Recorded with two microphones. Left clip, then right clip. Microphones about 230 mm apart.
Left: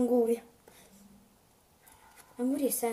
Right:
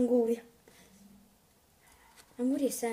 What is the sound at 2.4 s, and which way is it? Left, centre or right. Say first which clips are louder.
Speech: even; centre.